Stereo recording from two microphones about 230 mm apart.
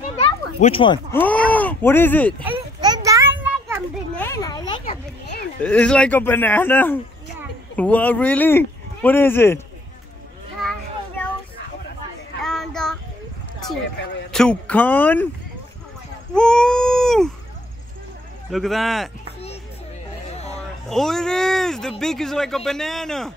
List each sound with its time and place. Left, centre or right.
0.6 s speech: left
1.1 s groan: centre
2.4 s a sound: centre
4.2 s a sound: centre
5.6 s speech: centre
10.6 s a sound: centre
12.4 s child singing: centre
14.3 s speech: centre
16.3 s baby cry: centre
18.5 s speech: centre
20.9 s speech: centre